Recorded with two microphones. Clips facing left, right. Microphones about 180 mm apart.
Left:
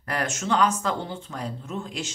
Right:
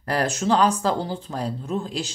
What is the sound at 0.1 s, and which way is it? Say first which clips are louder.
Speech: right 5 dB; 35° right (ahead or behind).